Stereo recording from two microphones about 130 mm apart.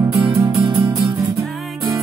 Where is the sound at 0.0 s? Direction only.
20° right (ahead or behind).